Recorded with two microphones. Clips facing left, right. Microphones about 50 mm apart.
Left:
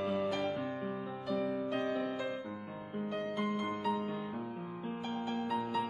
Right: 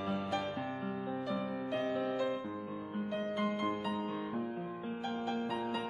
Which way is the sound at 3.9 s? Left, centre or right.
Centre.